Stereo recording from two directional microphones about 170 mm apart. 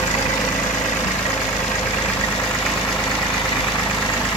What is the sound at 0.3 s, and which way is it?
Vehicle, 25° left (ahead or behind).